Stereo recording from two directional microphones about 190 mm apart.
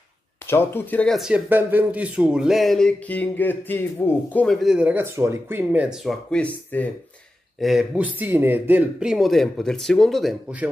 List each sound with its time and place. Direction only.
0.5 s speech: 10° left (ahead or behind)
7.6 s speech: 5° right (ahead or behind)